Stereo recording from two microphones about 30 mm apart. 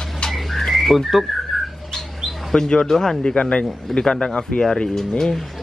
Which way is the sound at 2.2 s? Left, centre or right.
Centre.